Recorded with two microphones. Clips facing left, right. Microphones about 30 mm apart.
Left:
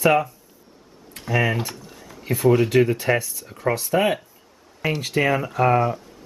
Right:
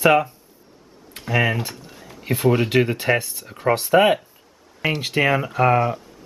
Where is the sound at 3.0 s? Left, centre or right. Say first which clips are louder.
Right 1 dB; right.